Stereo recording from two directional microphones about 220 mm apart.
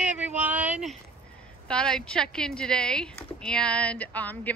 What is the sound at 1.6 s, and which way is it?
Speech, 5° left (ahead or behind).